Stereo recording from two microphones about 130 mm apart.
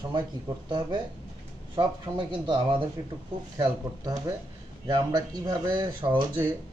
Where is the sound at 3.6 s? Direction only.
25° right (ahead or behind).